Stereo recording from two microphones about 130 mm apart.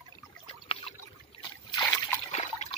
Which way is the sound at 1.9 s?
10° left (ahead or behind).